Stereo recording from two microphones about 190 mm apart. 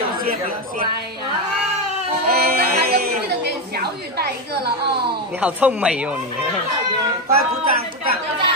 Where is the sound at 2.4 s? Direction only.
55° right (ahead or behind).